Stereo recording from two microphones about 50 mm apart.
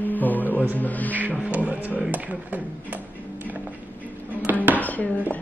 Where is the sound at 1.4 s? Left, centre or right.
Right.